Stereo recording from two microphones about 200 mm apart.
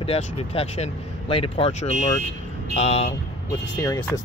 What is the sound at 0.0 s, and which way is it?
Speech, 30° left (ahead or behind).